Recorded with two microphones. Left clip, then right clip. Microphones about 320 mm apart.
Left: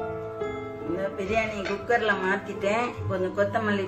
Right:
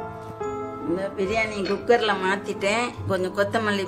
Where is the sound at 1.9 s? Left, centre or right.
Right.